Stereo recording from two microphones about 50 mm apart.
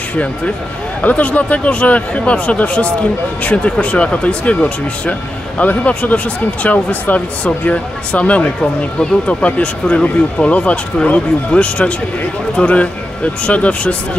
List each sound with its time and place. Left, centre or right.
1.0 s a man's voice: left